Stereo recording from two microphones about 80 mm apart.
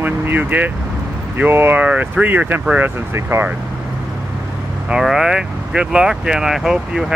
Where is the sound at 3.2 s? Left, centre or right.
Right.